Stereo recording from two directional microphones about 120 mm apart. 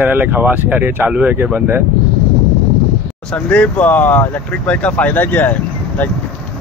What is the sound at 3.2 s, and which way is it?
Speech, 10° left (ahead or behind).